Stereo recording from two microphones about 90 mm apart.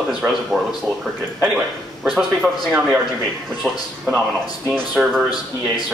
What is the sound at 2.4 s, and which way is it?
Speech, 10° right (ahead or behind).